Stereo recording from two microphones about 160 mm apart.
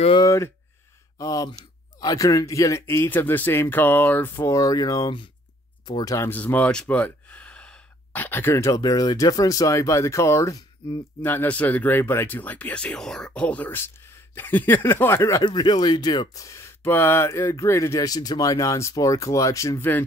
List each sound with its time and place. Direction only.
0.2 s speech: 20° left (ahead or behind)